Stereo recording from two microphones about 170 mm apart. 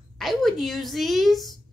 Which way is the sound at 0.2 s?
Centre (ahead or behind).